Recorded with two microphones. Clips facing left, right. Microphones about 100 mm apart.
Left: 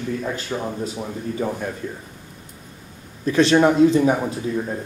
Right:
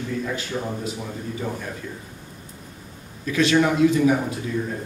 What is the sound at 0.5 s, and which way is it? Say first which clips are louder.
Speech: left 3 dB; 60° left (ahead or behind).